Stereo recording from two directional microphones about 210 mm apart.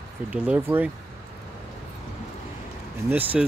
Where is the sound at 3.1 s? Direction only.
10° right (ahead or behind).